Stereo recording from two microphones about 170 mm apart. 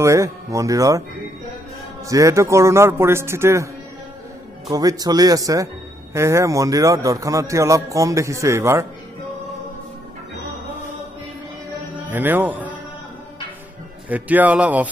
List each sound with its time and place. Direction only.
0.0 s a man's voice: 20° right (ahead or behind)
2.0 s a man's voice: 20° right (ahead or behind)
4.6 s a man's voice: 20° right (ahead or behind)
12.0 s a man's voice: 10° right (ahead or behind)
14.0 s a man's voice: 10° right (ahead or behind)